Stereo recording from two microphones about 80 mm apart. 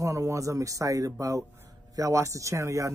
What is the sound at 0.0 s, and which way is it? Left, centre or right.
Speech, right.